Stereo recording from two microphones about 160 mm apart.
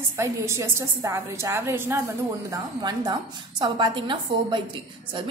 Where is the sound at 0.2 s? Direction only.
15° right (ahead or behind).